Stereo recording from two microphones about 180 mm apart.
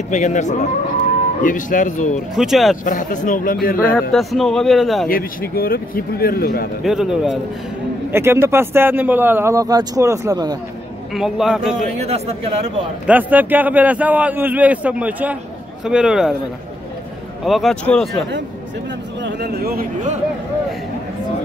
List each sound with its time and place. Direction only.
0.1 s speech: 40° left (ahead or behind)
2.3 s a man's voice: centre (ahead or behind)
2.8 s speech: 50° left (ahead or behind)
4.1 s a man's voice: centre (ahead or behind)
5.0 s speech: 55° left (ahead or behind)
6.8 s a man's voice: centre (ahead or behind)
8.1 s speech: 15° right (ahead or behind)
11.1 s a man's voice: centre (ahead or behind)
12.0 s speech: 35° right (ahead or behind)
13.0 s a man's voice: 10° right (ahead or behind)
17.5 s a man's voice: centre (ahead or behind)
19.2 s a man's voice: 65° right (ahead or behind)